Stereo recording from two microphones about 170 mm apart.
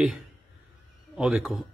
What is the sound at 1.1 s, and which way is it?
Speech, 5° right (ahead or behind).